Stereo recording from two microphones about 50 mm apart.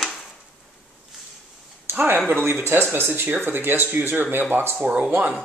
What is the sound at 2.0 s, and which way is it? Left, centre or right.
Speech, right.